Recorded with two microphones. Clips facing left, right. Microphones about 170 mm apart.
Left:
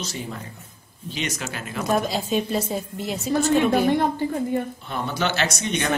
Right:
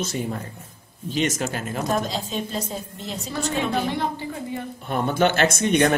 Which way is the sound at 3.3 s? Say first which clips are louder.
Left 6 dB; 50° left (ahead or behind).